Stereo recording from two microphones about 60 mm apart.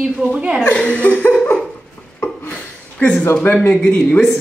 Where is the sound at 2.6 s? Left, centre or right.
Left.